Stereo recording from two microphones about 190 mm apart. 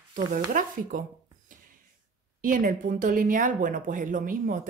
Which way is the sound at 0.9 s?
45° right (ahead or behind).